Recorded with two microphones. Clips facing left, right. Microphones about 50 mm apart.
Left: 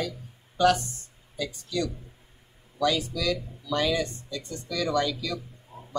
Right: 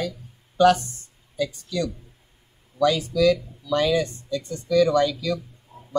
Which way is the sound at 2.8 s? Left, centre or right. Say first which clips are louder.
Right 7 dB; right.